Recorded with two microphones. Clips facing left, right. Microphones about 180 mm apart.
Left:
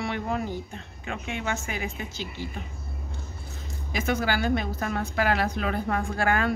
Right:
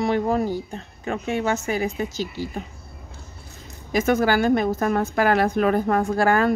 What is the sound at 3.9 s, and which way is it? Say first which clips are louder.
A woman's voice: right 7 dB; 45° right (ahead or behind).